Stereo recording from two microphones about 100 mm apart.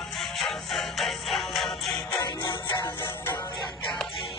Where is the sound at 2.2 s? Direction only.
40° left (ahead or behind).